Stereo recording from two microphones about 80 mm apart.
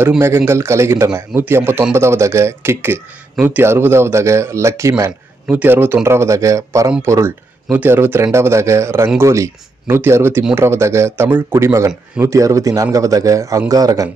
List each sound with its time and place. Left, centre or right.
0.5 s speech: right
5.5 s speech: right
7.7 s a man's voice: right